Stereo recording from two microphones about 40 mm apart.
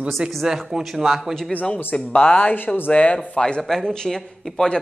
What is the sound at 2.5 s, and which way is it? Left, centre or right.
Speech, left.